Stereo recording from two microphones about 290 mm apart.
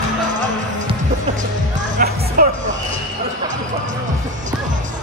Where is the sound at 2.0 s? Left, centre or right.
Right.